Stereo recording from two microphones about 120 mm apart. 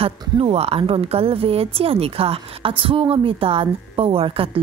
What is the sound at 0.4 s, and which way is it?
Speech, 55° right (ahead or behind).